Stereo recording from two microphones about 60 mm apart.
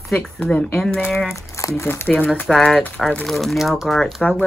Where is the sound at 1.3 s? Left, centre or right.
Left.